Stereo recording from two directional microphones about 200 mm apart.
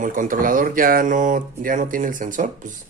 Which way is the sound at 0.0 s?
40° right (ahead or behind).